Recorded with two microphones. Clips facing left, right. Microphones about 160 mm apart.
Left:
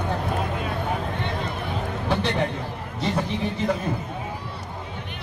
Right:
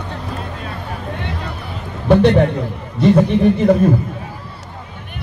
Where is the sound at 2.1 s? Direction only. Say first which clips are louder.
Right 13 dB; 55° right (ahead or behind).